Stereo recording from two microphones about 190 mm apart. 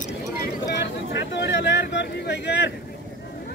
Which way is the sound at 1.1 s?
70° left (ahead or behind).